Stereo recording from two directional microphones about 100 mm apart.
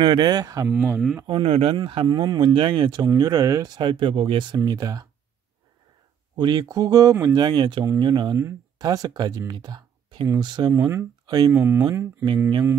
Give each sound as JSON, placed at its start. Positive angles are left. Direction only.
{"t": 0.0, "sound": "speech", "side_deg": -50}
{"t": 0.7, "sound": "speech", "side_deg": -20}
{"t": 1.2, "sound": "a man's voice", "side_deg": -65}
{"t": 1.8, "sound": "speech", "side_deg": -55}
{"t": 2.0, "sound": "speech", "side_deg": -45}
{"t": 3.0, "sound": "speech", "side_deg": -40}
{"t": 4.6, "sound": "speech", "side_deg": -40}
{"t": 6.3, "sound": "speech", "side_deg": -45}
{"t": 10.7, "sound": "speech", "side_deg": -25}
{"t": 11.2, "sound": "speech", "side_deg": -45}
{"t": 11.5, "sound": "speech", "side_deg": -25}